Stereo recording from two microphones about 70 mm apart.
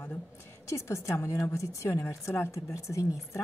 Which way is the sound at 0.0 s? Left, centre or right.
Left.